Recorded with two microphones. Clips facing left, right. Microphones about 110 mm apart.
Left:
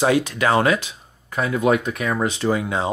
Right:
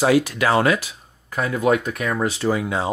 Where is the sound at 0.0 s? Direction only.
25° left (ahead or behind).